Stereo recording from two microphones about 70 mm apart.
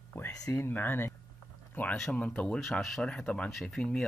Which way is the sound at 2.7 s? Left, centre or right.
Centre.